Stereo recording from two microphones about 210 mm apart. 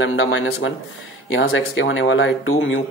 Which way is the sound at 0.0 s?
70° left (ahead or behind).